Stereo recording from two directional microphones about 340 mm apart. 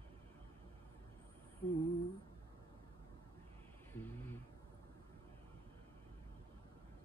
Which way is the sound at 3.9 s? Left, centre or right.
Centre.